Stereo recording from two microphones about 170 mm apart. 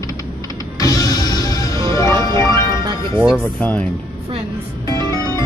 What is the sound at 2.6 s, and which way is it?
Music, 25° right (ahead or behind).